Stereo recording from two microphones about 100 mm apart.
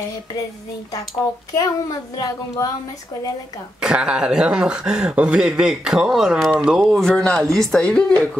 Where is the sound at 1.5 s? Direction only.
35° left (ahead or behind).